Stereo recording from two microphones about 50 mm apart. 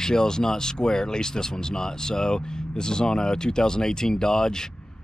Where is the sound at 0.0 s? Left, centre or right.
Centre.